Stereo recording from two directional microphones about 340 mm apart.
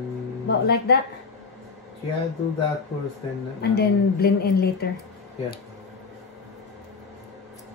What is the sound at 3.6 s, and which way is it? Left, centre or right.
A woman's voice, left.